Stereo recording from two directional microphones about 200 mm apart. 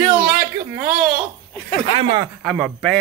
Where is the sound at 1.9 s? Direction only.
25° right (ahead or behind).